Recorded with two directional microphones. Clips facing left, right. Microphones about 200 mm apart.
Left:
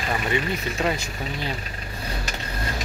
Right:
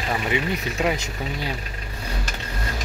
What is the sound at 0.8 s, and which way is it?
Speech, 15° right (ahead or behind).